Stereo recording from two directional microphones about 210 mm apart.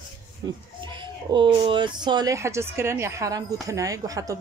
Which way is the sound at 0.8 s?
25° right (ahead or behind).